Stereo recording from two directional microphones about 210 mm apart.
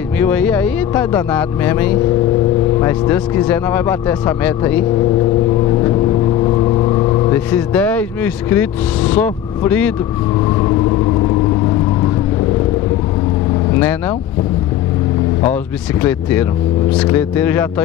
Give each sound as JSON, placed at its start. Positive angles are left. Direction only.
{"t": 0.2, "sound": "speech", "side_deg": 5}
{"t": 6.4, "sound": "vehicle", "side_deg": 25}
{"t": 7.3, "sound": "speech", "side_deg": 10}
{"t": 16.0, "sound": "speech", "side_deg": 10}